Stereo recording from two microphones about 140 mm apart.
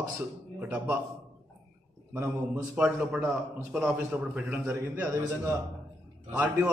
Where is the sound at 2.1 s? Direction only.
20° right (ahead or behind).